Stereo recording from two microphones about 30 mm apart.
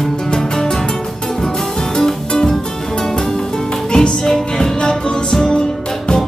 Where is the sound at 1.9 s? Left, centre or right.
Centre.